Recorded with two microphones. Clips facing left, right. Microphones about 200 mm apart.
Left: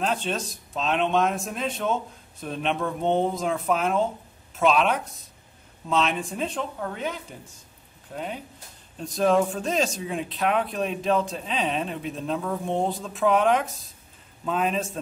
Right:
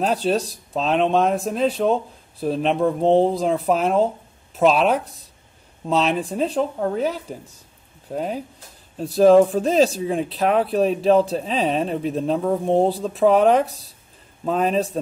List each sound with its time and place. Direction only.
0.0 s speech: 35° right (ahead or behind)